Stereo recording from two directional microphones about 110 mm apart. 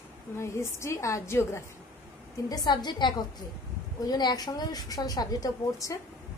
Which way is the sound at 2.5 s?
40° left (ahead or behind).